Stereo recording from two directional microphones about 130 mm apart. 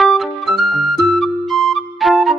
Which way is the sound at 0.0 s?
Centre (ahead or behind).